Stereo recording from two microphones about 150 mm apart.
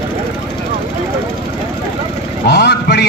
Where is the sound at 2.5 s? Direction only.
90° left.